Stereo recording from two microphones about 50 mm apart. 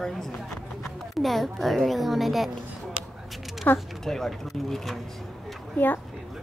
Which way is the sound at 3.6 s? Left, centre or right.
Left.